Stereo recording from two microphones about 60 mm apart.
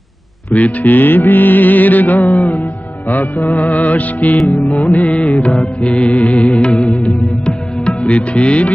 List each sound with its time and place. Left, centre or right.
0.5 s music: left